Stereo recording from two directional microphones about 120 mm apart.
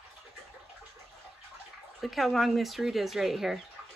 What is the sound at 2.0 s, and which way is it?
Speech, centre (ahead or behind).